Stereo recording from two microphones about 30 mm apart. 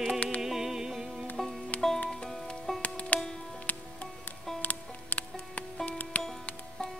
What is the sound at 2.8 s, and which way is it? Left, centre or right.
Music, left.